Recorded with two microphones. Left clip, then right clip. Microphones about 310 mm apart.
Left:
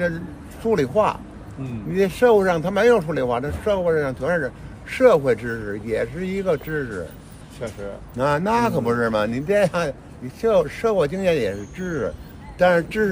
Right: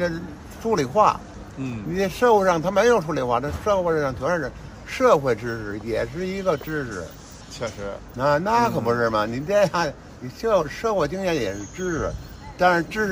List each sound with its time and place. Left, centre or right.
0.7 s speech: centre
7.6 s speech: right
8.2 s speech: centre